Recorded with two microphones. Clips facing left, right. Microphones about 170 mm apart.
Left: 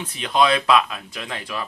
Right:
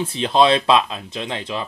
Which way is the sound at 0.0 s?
30° right (ahead or behind).